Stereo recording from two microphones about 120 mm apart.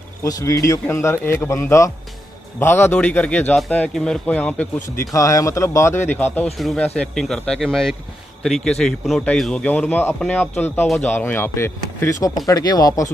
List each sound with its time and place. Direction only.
0.2 s speech: 25° left (ahead or behind); by 4.6 s 10° left (ahead or behind)
4.9 s speech: 25° left (ahead or behind)
6.6 s speech: centre (ahead or behind); by 13.0 s 30° left (ahead or behind)